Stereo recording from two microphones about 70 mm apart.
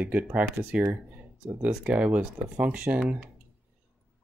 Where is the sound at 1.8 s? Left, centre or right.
Centre.